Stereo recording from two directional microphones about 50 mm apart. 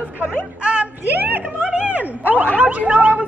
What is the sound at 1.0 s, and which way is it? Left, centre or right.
Speech, right.